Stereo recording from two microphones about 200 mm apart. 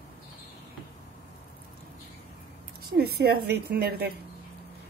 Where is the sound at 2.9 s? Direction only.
50° right (ahead or behind).